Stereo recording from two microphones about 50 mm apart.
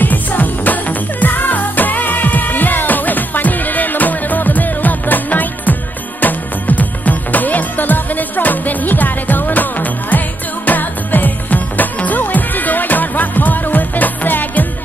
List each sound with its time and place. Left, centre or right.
0.0 s music: left